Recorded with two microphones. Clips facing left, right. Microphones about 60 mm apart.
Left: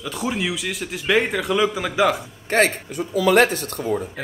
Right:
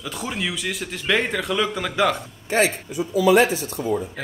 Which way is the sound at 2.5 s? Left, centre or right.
Left.